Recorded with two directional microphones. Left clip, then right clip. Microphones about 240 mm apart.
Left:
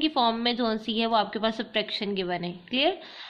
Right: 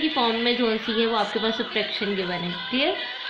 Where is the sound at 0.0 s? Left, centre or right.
Left.